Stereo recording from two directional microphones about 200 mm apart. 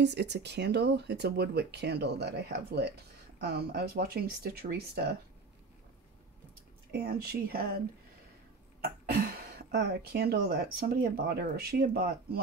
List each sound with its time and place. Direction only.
0.0 s speech: 60° right (ahead or behind)
6.9 s speech: 55° right (ahead or behind)
8.8 s speech: 50° right (ahead or behind)